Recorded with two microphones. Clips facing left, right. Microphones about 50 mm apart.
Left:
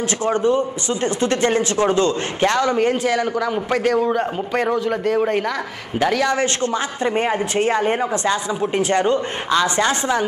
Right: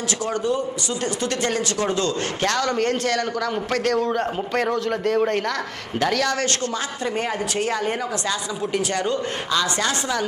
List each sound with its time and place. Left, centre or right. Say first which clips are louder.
0.2 s speech: left 6 dB; left